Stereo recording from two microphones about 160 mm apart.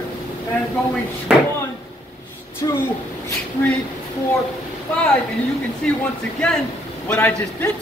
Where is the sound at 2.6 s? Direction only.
20° left (ahead or behind).